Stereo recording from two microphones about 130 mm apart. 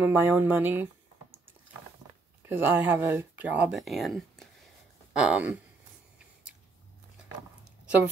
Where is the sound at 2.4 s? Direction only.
15° right (ahead or behind).